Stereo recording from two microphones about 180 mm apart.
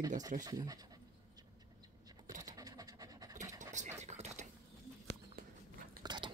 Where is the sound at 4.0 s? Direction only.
40° right (ahead or behind).